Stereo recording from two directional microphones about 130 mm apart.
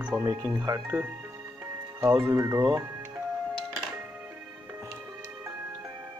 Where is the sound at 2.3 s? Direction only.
25° right (ahead or behind).